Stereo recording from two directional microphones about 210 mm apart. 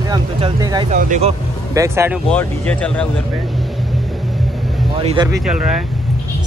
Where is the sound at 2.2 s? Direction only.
5° left (ahead or behind).